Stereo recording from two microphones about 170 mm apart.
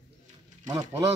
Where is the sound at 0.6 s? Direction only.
20° right (ahead or behind).